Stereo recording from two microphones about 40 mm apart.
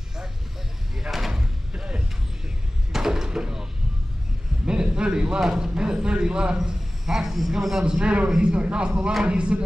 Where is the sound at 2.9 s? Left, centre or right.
Centre.